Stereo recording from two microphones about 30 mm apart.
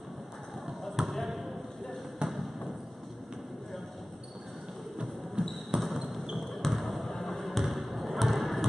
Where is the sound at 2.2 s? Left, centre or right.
Right.